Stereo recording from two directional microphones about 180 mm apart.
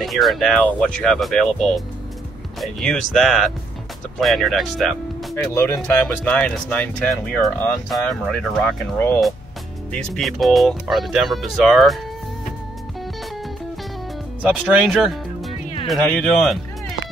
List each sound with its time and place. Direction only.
0.0 s speech: centre (ahead or behind)
5.3 s speech: 15° left (ahead or behind)
5.8 s speech: 5° left (ahead or behind)
14.4 s speech: 5° right (ahead or behind)